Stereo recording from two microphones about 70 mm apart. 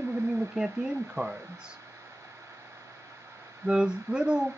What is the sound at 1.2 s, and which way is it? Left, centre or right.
Speech, right.